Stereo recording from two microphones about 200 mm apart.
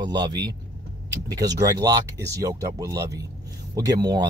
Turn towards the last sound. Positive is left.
turn(degrees=-20)  # may be behind; listen again after turning